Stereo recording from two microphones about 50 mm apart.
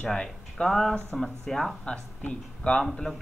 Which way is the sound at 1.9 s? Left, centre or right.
Left.